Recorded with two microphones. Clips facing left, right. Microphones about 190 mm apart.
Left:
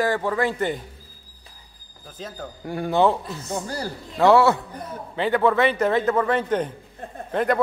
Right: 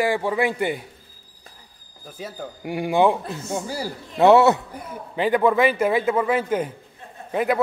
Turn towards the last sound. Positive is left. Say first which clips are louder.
# even
turn(degrees=-5)  # may be behind; listen again after turning